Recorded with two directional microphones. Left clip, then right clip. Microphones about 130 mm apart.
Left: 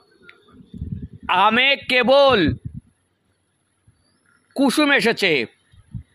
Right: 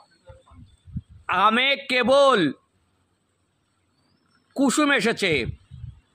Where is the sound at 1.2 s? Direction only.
30° left (ahead or behind).